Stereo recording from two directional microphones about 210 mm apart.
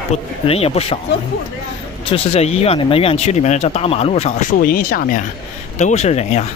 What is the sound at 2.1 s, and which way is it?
Speech, 30° left (ahead or behind).